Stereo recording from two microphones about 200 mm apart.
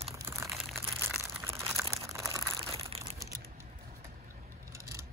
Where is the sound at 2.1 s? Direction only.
15° right (ahead or behind).